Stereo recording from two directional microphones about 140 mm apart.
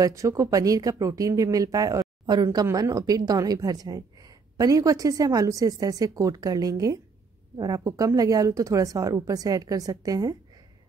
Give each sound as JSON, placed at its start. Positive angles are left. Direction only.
{"t": 0.0, "sound": "speech", "side_deg": -20}